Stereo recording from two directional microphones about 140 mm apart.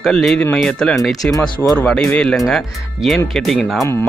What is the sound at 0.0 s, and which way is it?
Speech, centre (ahead or behind).